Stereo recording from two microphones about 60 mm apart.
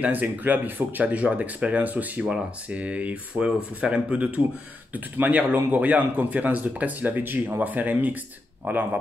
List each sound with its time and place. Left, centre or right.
0.0 s a man's voice: right